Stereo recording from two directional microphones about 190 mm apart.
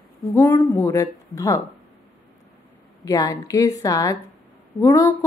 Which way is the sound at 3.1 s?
20° left (ahead or behind).